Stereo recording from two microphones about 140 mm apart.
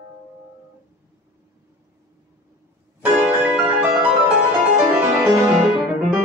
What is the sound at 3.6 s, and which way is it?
Music, 15° right (ahead or behind).